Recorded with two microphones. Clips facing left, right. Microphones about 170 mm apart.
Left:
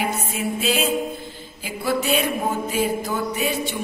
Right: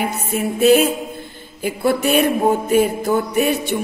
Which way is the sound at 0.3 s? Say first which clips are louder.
Right 10 dB; 55° right (ahead or behind).